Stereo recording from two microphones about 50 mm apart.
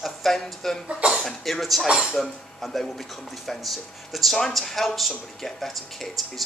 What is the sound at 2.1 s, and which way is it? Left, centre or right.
A man's voice, centre.